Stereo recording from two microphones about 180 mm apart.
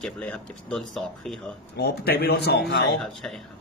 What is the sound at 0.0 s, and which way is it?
Speech, 5° left (ahead or behind).